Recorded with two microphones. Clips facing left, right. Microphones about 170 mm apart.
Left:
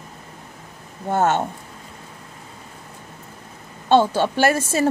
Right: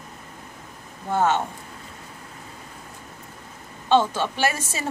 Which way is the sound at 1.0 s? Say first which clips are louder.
Left 2 dB; 45° left (ahead or behind).